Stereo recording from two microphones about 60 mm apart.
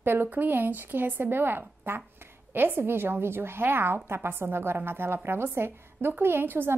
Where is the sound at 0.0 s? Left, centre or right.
Right.